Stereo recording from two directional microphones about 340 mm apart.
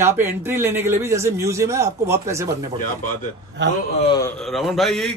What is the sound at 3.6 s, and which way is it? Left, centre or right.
Speech, right.